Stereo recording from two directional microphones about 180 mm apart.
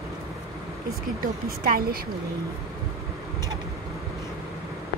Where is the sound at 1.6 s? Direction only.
55° right (ahead or behind).